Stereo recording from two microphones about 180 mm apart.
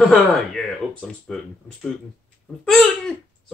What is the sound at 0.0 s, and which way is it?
Speech, centre (ahead or behind).